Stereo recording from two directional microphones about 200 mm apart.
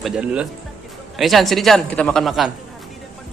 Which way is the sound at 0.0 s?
5° right (ahead or behind).